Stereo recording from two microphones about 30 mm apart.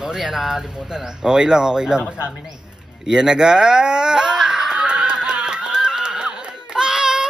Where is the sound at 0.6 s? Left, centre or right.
Right.